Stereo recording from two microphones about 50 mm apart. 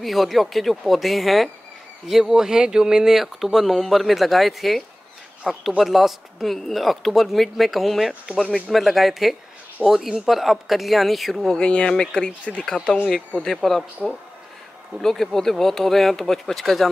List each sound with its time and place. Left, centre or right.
0.0 s speech: centre
11.5 s speech: centre